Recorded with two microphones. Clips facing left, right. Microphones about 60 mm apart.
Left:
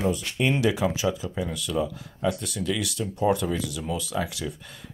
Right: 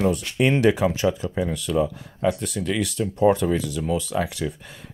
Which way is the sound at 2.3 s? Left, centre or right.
Centre.